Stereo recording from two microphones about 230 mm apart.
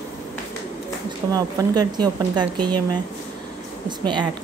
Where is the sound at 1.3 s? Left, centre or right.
Centre.